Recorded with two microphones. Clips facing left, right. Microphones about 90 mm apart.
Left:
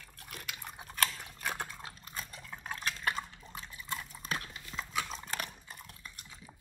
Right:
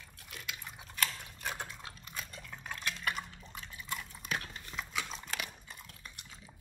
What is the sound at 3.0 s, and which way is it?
Liquid, 35° left (ahead or behind).